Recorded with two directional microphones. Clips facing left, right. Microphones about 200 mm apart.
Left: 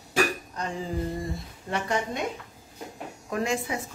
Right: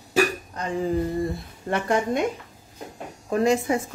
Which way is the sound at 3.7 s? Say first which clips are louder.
Right 8 dB; 45° right (ahead or behind).